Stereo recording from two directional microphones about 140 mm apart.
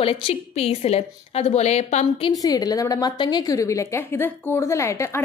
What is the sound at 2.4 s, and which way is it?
A woman's voice, 25° left (ahead or behind).